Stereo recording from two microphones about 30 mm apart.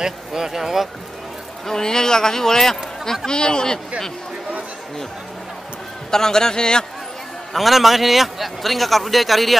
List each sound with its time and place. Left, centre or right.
0.0 s speech: centre
1.7 s a man's voice: left
3.3 s a man's voice: left
6.0 s a man's voice: centre
7.5 s a man's voice: centre